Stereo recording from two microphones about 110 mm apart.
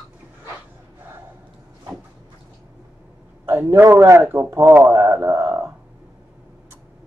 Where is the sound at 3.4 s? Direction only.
25° right (ahead or behind).